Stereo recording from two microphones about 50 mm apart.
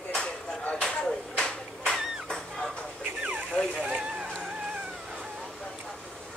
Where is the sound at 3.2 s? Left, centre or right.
Right.